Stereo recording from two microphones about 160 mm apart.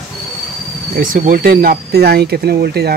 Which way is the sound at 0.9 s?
60° right (ahead or behind).